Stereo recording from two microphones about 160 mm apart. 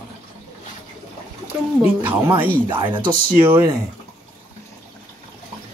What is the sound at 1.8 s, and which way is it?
Speech, 15° right (ahead or behind).